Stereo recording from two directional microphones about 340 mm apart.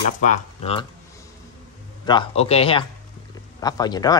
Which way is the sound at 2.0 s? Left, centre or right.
Centre.